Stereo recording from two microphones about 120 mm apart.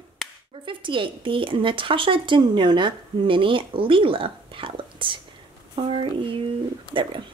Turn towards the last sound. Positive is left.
turn(degrees=-45)  # may be behind; listen again after turning